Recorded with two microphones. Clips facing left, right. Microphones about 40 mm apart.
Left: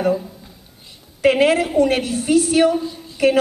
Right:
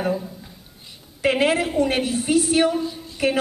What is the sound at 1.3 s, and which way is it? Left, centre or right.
A woman's voice, centre.